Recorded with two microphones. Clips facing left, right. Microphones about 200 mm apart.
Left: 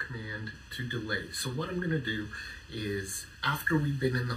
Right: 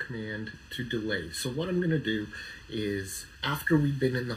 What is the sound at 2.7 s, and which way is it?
Speech, 20° right (ahead or behind).